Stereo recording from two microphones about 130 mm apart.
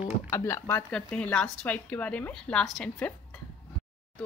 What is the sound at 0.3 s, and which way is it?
Speech, 20° left (ahead or behind).